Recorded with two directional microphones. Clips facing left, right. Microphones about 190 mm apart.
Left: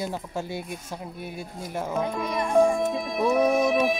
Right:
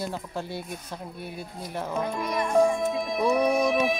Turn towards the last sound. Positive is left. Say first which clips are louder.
# left 2 dB
turn(degrees=0)  # may be behind; listen again after turning